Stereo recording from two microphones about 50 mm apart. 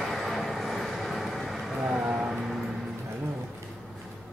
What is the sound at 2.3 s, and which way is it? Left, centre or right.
Music, centre.